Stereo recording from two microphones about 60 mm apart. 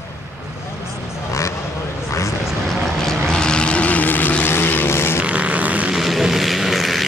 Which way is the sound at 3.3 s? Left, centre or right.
Centre.